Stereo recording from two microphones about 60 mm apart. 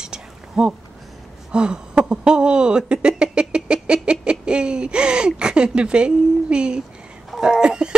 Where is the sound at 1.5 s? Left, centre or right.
Centre.